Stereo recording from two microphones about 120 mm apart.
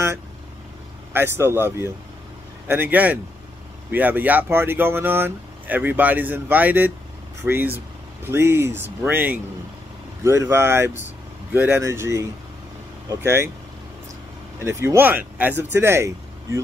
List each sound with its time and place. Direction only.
1.1 s speech: 20° right (ahead or behind)
14.6 s speech: 20° right (ahead or behind)